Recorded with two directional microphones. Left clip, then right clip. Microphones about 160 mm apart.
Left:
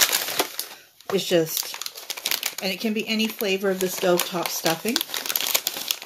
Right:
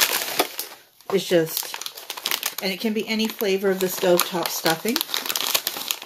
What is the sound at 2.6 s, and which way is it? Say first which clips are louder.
Speech: right 1 dB; 15° left (ahead or behind).